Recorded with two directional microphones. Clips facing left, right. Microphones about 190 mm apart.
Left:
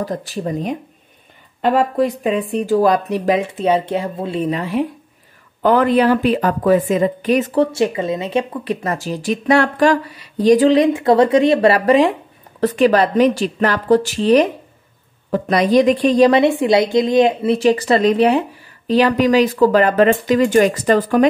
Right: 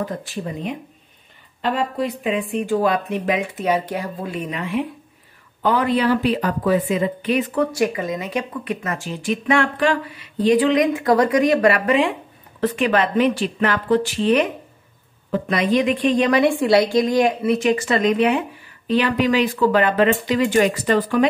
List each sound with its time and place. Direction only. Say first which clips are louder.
0.0 s speech: left 4 dB; 40° left (ahead or behind)
5.6 s speech: left 5 dB; 50° left (ahead or behind)
7.6 s speech: left 3 dB; 25° left (ahead or behind); by 21.3 s 45° left (ahead or behind)